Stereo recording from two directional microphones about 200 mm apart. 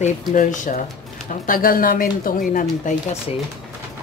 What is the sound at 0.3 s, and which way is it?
Speech, 40° left (ahead or behind).